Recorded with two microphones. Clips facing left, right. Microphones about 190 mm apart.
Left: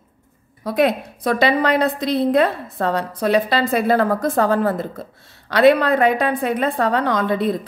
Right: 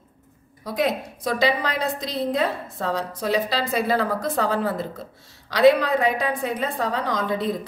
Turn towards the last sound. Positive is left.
turn(degrees=60)  # may be behind; listen again after turning